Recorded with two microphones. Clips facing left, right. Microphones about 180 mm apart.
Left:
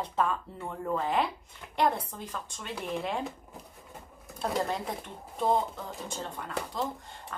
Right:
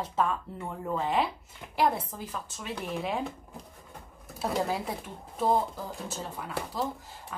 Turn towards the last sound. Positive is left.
turn(degrees=-5)  # may be behind; listen again after turning